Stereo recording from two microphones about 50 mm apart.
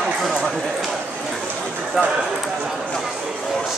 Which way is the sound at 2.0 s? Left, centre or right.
Centre.